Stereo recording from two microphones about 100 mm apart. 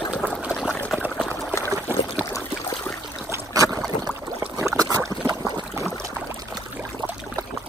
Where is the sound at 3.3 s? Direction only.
35° right (ahead or behind).